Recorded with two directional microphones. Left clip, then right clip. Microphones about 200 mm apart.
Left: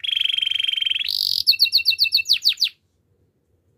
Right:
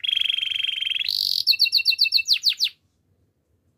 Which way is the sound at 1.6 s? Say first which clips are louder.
Left 1 dB; 10° left (ahead or behind).